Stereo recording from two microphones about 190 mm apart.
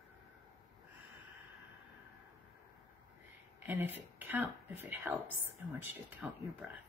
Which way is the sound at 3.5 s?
10° right (ahead or behind).